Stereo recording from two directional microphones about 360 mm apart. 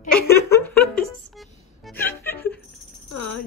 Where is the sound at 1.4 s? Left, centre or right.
Centre.